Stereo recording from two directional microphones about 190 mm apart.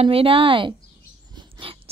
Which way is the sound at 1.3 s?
25° right (ahead or behind).